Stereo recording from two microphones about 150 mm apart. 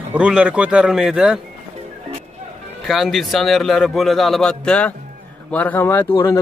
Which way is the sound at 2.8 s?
Centre (ahead or behind).